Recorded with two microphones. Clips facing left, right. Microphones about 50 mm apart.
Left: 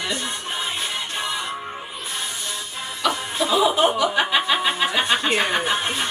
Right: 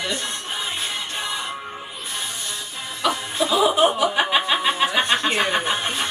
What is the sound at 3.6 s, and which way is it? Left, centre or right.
Speech, centre.